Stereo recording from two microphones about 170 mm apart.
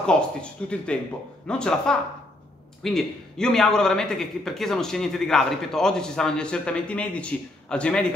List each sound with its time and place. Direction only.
0.0 s a man's voice: 5° left (ahead or behind)